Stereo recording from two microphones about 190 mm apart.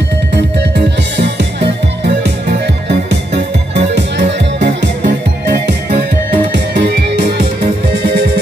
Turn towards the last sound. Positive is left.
turn(degrees=-60)  # may be behind; listen again after turning